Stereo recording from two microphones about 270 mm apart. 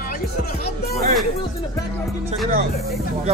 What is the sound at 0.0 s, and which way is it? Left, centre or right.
Music, left.